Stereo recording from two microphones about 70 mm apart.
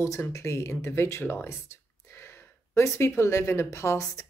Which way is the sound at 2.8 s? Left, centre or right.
Left.